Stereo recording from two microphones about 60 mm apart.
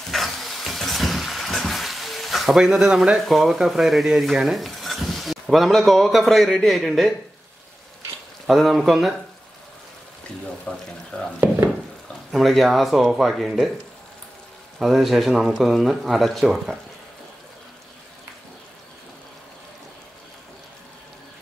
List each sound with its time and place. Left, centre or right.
0.1 s a sound: centre
3.2 s speech: centre
8.5 s speech: centre
10.7 s speech: left
12.3 s speech: centre
14.8 s speech: centre